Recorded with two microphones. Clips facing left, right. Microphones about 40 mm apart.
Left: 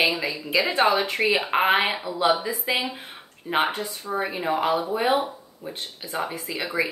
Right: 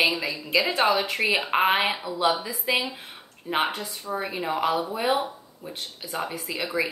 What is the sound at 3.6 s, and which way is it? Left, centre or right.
Speech, left.